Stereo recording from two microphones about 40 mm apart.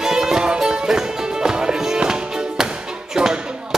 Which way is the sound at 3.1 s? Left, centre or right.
Centre.